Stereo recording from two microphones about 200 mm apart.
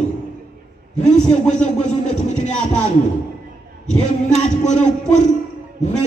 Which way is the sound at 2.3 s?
35° left (ahead or behind).